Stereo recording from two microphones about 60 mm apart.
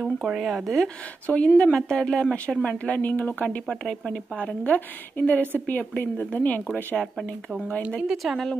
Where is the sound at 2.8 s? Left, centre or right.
Left.